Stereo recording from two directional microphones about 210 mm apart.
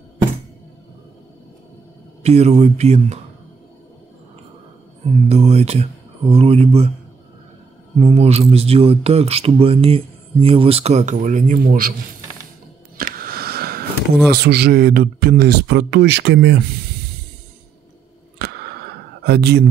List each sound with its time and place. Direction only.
2.2 s speech: 30° right (ahead or behind)
5.3 s speech: 30° right (ahead or behind)
8.0 s speech: 30° right (ahead or behind)
12.9 s a sound: 45° right (ahead or behind)
14.3 s speech: 50° right (ahead or behind)
18.4 s a sound: 50° right (ahead or behind)
19.2 s speech: 50° right (ahead or behind)